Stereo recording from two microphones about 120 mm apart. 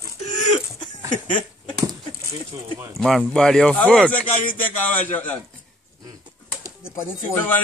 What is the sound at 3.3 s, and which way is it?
A man's voice, 5° left (ahead or behind).